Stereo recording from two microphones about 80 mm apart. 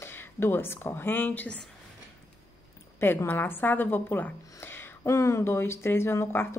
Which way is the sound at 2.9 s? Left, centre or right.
Left.